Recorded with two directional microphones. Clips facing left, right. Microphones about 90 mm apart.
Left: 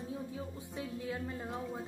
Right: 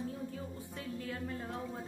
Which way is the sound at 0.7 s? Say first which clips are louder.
Left 3 dB; 15° left (ahead or behind).